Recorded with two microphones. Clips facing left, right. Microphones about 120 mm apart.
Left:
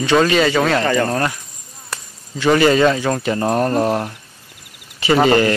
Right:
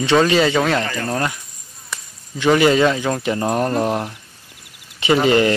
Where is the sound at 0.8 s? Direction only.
60° left (ahead or behind).